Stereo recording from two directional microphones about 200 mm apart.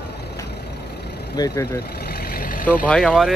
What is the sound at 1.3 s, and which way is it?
Speech, 15° left (ahead or behind).